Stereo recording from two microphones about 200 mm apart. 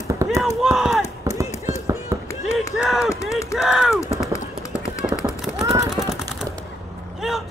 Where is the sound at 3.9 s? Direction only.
15° left (ahead or behind).